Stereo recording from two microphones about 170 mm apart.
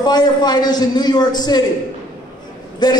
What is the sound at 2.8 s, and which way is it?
Speech, 25° left (ahead or behind).